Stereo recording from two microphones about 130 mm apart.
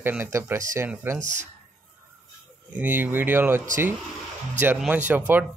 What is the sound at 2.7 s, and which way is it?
Speech, 15° right (ahead or behind).